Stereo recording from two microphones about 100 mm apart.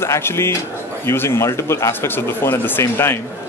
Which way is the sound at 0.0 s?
25° left (ahead or behind).